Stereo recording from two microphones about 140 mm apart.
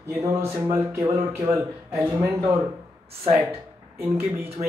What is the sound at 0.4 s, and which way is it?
Speech, 15° right (ahead or behind).